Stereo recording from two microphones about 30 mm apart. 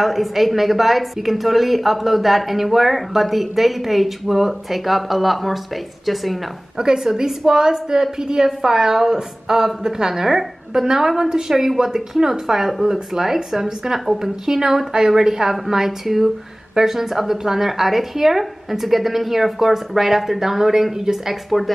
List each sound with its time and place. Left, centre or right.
0.0 s speech: centre
6.8 s a woman's voice: right; by 21.4 s centre